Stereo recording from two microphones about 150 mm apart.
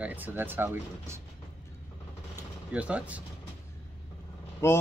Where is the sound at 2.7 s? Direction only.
10° right (ahead or behind).